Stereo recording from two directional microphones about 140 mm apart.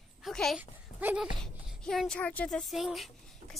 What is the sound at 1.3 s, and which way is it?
Speech, 5° left (ahead or behind).